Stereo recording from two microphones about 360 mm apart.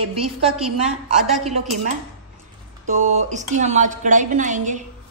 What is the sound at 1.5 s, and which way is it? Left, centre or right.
A woman's voice, centre.